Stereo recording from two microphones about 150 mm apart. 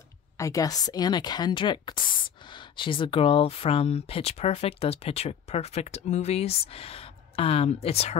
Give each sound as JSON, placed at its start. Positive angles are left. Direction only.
{"t": 0.4, "sound": "speech", "side_deg": 20}